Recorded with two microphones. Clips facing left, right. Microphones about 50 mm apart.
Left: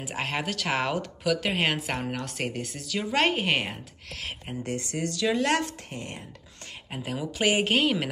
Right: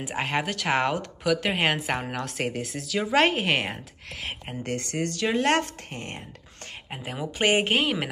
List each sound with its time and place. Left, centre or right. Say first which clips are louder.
0.1 s speech: right 3 dB; centre
4.6 s speech: right 2 dB; right
7.3 s speech: right 2 dB; right
7.6 s speech: even; centre